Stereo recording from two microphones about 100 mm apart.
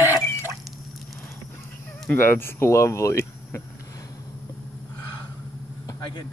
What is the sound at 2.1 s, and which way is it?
Speech, 25° left (ahead or behind).